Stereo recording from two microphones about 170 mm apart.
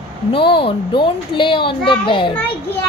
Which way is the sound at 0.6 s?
30° left (ahead or behind).